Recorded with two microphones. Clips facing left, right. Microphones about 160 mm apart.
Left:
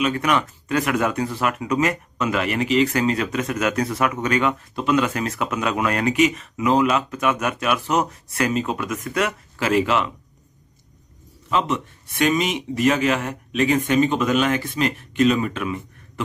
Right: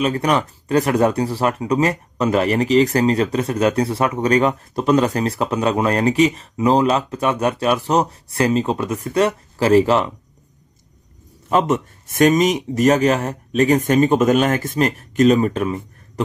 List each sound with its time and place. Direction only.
0.0 s speech: 35° right (ahead or behind)
11.4 s speech: 45° right (ahead or behind)